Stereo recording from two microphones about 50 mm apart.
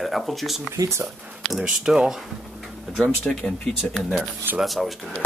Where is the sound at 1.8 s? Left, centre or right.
Centre.